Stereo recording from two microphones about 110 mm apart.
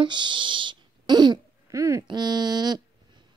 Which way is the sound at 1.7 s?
30° right (ahead or behind).